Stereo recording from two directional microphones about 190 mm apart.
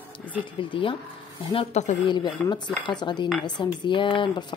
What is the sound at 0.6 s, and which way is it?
Speech, 25° left (ahead or behind).